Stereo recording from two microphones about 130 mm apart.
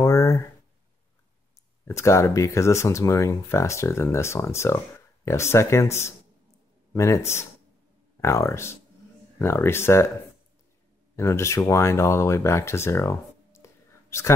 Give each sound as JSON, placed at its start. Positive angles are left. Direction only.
{"t": 0.0, "sound": "a sound", "side_deg": 25}
{"t": 1.9, "sound": "speech", "side_deg": 20}
{"t": 11.1, "sound": "speech", "side_deg": 20}